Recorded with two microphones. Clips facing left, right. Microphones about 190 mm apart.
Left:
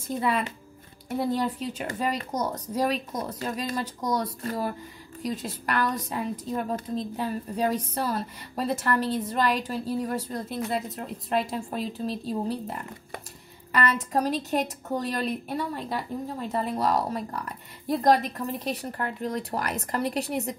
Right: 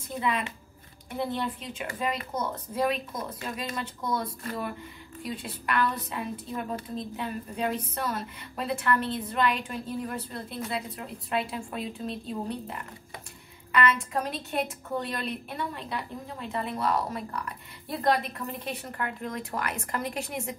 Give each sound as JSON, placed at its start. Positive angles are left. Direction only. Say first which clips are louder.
{"t": 1.3, "sound": "a woman's voice", "louder": "left 5 dB", "side_deg": 40}